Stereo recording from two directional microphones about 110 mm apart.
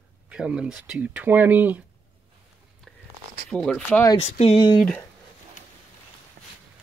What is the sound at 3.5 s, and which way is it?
Speech, 10° left (ahead or behind).